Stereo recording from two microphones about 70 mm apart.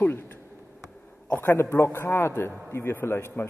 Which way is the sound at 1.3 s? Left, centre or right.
Left.